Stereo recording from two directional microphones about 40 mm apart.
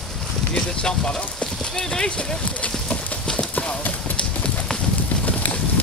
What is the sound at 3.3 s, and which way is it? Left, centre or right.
Clip-clop, left.